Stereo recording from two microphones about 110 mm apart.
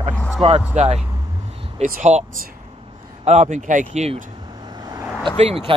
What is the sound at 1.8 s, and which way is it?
Speech, 70° right (ahead or behind).